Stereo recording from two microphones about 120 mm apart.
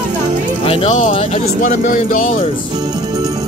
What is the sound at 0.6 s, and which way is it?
Speech, 55° left (ahead or behind).